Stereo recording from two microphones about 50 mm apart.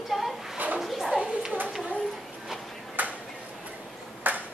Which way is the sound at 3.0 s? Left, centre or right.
Right.